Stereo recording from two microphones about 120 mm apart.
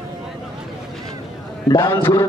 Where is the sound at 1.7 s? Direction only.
25° left (ahead or behind).